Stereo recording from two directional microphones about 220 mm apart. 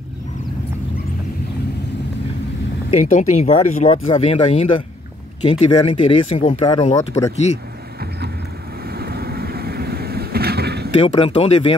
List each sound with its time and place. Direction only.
3.1 s speech: 30° left (ahead or behind)
6.6 s speech: 20° left (ahead or behind)
8.8 s vehicle: 45° right (ahead or behind)
11.0 s speech: 25° left (ahead or behind)